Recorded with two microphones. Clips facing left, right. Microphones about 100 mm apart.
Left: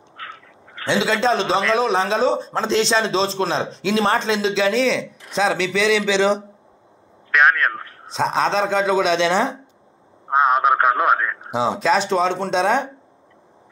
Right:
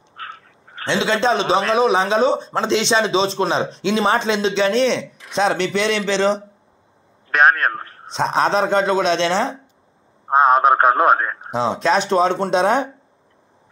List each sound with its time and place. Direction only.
0.2 s a sound: 40° right (ahead or behind)
0.8 s speech: 5° left (ahead or behind)
7.2 s a sound: 35° right (ahead or behind)
8.1 s speech: centre (ahead or behind)
10.3 s radio: 35° right (ahead or behind)
11.5 s speech: 10° left (ahead or behind)